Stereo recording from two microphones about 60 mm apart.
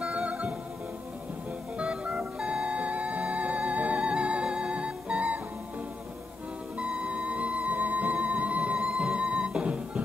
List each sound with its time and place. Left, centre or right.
0.0 s music: right
1.8 s music: centre
6.8 s music: centre